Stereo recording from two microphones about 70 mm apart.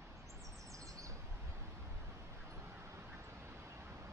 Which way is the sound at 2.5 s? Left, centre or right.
Right.